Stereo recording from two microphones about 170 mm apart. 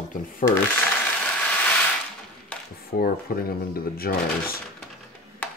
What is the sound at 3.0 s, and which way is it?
Speech, 60° left (ahead or behind).